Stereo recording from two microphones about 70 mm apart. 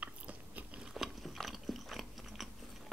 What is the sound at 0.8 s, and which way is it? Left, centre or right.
Biting, centre.